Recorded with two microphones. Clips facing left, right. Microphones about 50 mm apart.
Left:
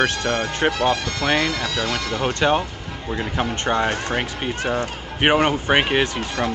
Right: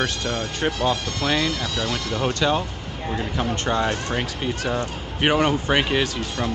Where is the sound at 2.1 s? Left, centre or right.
Left.